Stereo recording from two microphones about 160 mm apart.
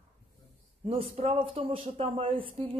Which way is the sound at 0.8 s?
35° right (ahead or behind).